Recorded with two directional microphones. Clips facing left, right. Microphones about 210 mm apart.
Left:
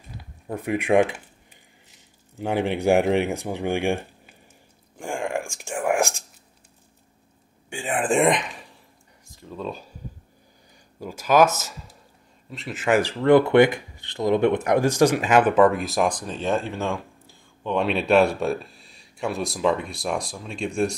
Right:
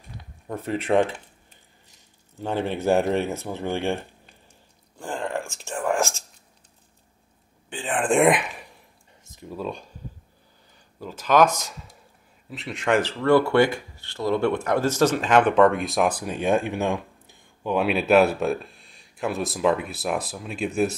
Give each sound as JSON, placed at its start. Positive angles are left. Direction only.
{"t": 0.2, "sound": "a sound", "side_deg": 10}
{"t": 2.3, "sound": "speech", "side_deg": 15}
{"t": 7.7, "sound": "speech", "side_deg": 10}
{"t": 9.2, "sound": "a sound", "side_deg": -20}
{"t": 9.6, "sound": "speech", "side_deg": 0}
{"t": 11.0, "sound": "speech", "side_deg": 10}
{"t": 13.2, "sound": "speech", "side_deg": 20}
{"t": 17.6, "sound": "speech", "side_deg": -5}